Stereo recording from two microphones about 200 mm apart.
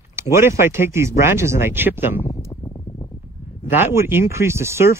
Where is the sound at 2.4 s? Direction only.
20° left (ahead or behind).